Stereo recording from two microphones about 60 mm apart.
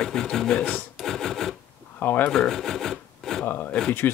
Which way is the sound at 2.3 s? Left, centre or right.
Centre.